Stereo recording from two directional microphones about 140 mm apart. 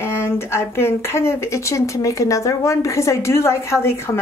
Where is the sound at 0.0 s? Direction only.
20° left (ahead or behind).